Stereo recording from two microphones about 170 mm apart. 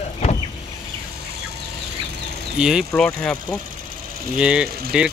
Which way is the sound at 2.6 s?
5° right (ahead or behind).